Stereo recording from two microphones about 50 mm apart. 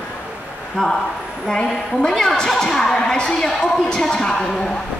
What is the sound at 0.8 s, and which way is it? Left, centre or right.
A woman's voice, centre.